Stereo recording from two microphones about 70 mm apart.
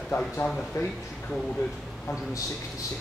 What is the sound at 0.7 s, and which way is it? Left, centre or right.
Speech, left.